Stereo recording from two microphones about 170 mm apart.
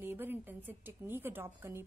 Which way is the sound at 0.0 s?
10° right (ahead or behind).